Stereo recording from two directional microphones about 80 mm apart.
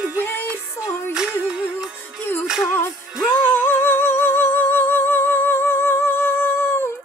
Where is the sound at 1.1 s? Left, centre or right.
Centre.